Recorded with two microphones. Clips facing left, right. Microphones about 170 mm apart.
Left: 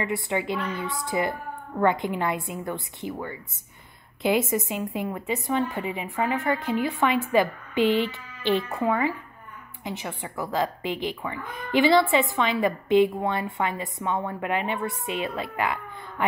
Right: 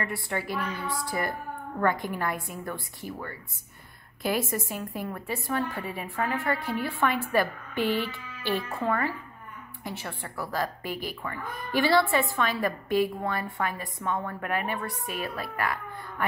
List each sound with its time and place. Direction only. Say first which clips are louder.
0.0 s speech: left 5 dB; 20° left (ahead or behind)